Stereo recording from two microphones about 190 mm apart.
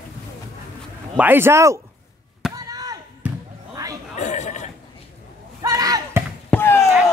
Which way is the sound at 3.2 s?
5° right (ahead or behind).